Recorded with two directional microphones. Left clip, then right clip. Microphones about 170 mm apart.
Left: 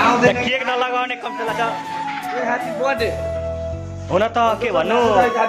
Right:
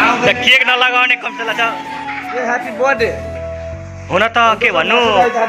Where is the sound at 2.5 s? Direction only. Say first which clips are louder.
Right 6 dB; 35° right (ahead or behind).